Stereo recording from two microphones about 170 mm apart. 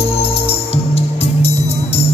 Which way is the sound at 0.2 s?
35° left (ahead or behind).